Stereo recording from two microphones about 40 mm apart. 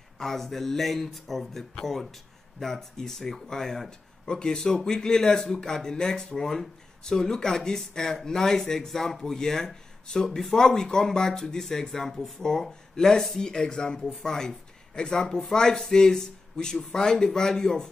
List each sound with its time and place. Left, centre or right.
0.2 s a man's voice: centre